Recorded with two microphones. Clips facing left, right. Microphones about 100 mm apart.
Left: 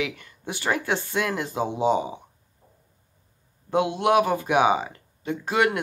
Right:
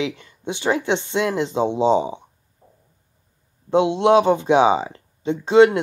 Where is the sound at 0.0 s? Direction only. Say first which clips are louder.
Right 4 dB; 25° right (ahead or behind).